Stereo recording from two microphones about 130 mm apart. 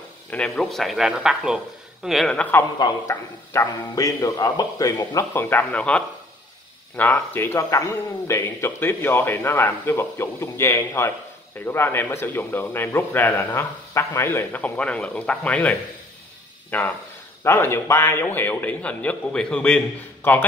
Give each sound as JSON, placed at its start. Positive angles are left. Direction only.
{"t": 0.3, "sound": "speech", "side_deg": 10}
{"t": 3.1, "sound": "speech", "side_deg": 25}
{"t": 16.7, "sound": "speech", "side_deg": 15}